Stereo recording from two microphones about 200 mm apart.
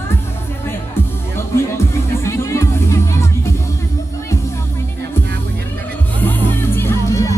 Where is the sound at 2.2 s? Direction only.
15° left (ahead or behind).